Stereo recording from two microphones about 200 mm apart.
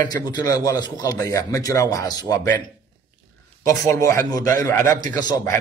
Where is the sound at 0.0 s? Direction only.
20° left (ahead or behind).